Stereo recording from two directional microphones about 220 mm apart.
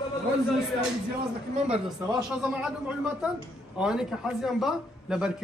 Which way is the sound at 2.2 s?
5° right (ahead or behind).